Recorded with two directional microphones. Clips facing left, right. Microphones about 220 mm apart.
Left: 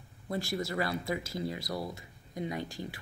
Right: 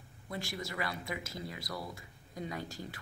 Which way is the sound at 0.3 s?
35° left (ahead or behind).